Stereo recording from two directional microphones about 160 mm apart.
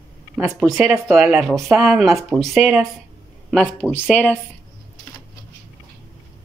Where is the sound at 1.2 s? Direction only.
Centre (ahead or behind).